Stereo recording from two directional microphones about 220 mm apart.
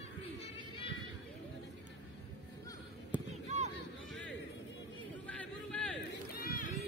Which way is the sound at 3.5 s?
30° right (ahead or behind).